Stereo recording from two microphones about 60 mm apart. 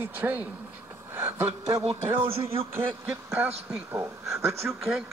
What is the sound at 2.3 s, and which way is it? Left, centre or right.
Speech, right.